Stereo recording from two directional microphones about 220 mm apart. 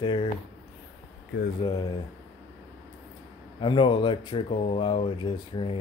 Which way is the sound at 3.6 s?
20° left (ahead or behind).